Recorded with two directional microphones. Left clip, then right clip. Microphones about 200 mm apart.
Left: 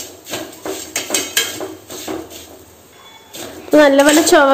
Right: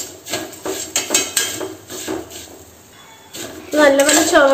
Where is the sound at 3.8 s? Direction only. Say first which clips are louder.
Even; 55° left (ahead or behind).